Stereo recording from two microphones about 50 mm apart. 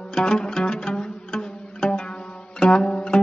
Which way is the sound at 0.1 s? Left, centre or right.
Centre.